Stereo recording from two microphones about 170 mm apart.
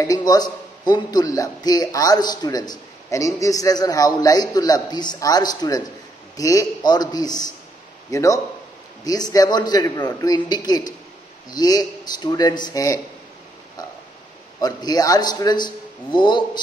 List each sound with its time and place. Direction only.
0.0 s a man's voice: 20° left (ahead or behind)
14.6 s a man's voice: 25° left (ahead or behind)